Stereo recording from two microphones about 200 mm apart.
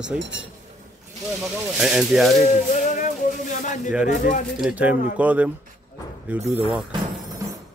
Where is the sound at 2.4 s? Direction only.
35° left (ahead or behind).